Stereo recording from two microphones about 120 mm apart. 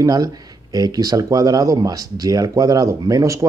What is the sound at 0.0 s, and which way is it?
Speech, 30° right (ahead or behind).